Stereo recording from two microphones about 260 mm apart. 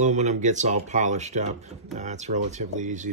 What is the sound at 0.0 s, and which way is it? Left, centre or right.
Speech, right.